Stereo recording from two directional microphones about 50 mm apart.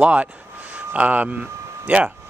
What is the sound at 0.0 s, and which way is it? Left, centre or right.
Speech, right.